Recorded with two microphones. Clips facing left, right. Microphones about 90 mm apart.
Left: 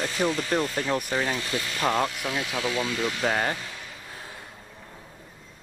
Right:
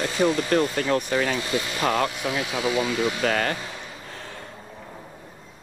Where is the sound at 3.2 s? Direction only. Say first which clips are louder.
Right 2 dB; 20° left (ahead or behind).